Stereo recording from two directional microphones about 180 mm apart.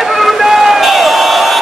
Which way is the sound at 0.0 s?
Centre (ahead or behind).